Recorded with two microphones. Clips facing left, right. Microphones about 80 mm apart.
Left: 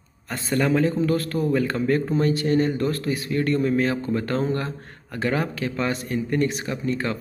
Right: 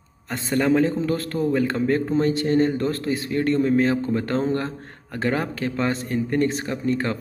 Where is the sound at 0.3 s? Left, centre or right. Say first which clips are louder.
Right 2 dB; right.